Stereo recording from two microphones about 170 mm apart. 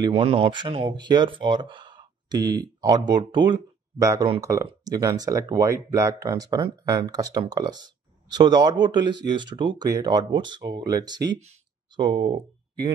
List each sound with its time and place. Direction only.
0.0 s speech: 35° right (ahead or behind)